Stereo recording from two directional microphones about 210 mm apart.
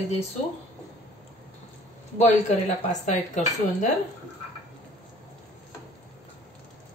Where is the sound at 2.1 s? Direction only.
35° left (ahead or behind).